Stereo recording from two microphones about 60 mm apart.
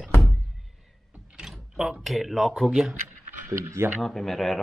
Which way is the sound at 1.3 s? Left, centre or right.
Centre.